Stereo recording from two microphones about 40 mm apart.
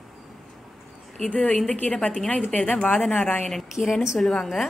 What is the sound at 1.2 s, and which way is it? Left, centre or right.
Speech, left.